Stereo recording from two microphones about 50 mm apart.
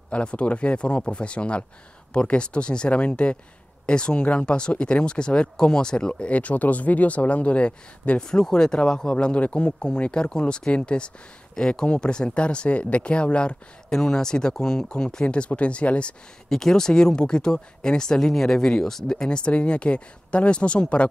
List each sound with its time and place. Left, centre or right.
0.1 s speech: left
8.3 s speech: centre
16.4 s speech: centre